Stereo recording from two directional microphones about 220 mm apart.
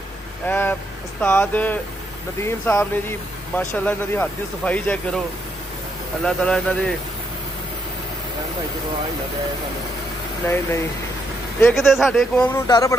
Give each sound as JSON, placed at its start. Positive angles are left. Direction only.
{"t": 0.5, "sound": "speech", "side_deg": 10}
{"t": 6.2, "sound": "speech", "side_deg": 5}
{"t": 10.4, "sound": "speech", "side_deg": 10}
{"t": 11.6, "sound": "speech", "side_deg": 0}